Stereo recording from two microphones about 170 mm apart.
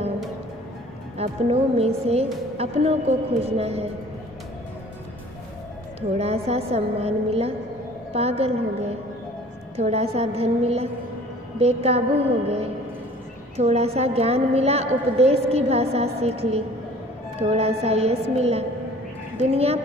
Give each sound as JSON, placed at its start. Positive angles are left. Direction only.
{"t": 1.1, "sound": "a woman's voice", "side_deg": -35}
{"t": 6.1, "sound": "a woman's voice", "side_deg": -35}
{"t": 13.6, "sound": "a woman's voice", "side_deg": -40}